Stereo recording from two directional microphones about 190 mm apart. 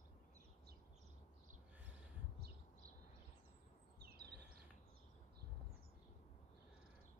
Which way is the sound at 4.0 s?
55° right (ahead or behind).